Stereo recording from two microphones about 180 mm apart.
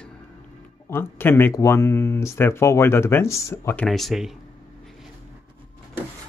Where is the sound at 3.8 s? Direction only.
Centre (ahead or behind).